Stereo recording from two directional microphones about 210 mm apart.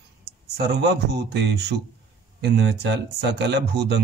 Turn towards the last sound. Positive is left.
turn(degrees=-55)  # may be behind; listen again after turning